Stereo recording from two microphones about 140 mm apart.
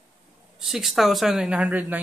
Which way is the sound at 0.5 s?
Centre (ahead or behind).